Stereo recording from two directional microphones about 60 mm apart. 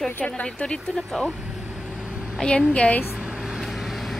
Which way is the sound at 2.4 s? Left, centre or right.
Centre.